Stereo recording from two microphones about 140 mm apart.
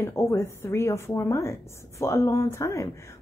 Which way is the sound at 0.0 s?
20° left (ahead or behind).